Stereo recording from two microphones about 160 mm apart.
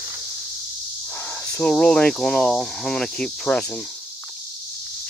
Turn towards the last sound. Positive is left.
turn(degrees=5)  # may be behind; listen again after turning